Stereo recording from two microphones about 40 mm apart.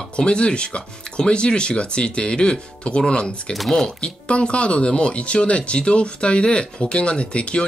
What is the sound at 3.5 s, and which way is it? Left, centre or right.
Speech, centre.